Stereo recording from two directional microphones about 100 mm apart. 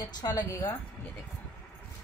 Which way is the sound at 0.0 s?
40° left (ahead or behind).